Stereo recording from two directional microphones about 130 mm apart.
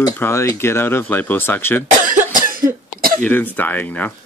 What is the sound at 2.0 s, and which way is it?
Cough, 90° right.